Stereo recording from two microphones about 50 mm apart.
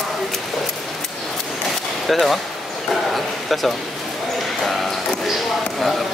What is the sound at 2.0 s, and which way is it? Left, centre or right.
Speech, centre.